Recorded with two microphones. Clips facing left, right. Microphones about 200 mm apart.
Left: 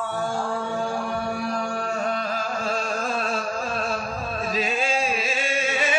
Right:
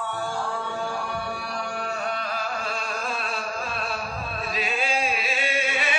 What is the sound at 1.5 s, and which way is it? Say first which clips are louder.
Music: left 4 dB; 40° left (ahead or behind).